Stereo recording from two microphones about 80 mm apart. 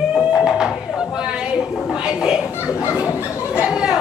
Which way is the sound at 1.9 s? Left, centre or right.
Centre.